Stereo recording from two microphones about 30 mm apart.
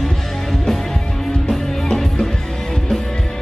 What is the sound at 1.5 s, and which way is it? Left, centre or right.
Music, centre.